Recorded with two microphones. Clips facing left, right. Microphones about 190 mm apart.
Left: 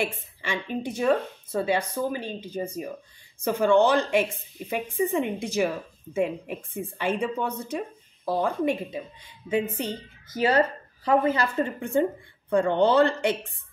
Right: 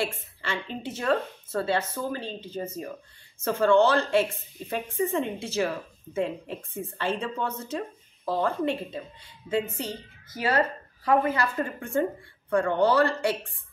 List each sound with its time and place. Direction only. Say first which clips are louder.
0.0 s a woman's voice: left 1 dB; 15° left (ahead or behind)